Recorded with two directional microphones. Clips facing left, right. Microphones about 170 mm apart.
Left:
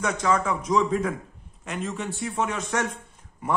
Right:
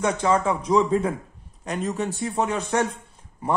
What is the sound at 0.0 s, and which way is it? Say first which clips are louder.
A man's voice: right 3 dB; 30° right (ahead or behind).